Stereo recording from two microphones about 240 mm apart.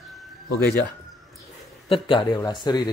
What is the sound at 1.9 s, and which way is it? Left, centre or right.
Speech, left.